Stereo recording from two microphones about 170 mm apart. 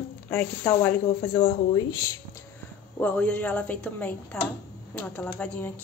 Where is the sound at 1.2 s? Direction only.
20° left (ahead or behind).